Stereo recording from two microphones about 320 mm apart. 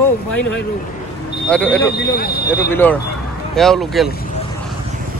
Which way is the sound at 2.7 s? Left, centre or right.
Centre.